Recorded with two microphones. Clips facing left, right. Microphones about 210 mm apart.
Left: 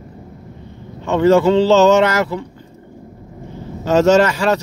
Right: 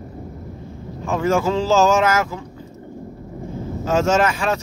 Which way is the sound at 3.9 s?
35° left (ahead or behind).